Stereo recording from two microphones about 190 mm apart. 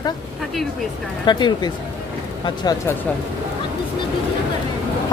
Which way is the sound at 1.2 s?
25° left (ahead or behind).